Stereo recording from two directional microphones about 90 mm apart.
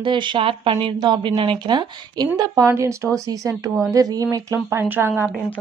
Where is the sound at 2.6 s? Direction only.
30° right (ahead or behind).